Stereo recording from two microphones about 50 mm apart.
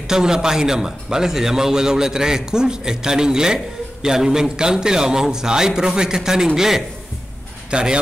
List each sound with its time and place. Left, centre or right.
0.1 s a man's voice: centre
7.7 s speech: centre